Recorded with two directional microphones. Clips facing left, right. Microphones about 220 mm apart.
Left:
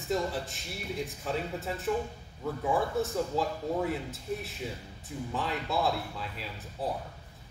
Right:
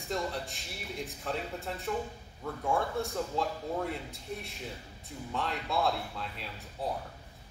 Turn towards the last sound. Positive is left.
turn(degrees=0)  # may be behind; listen again after turning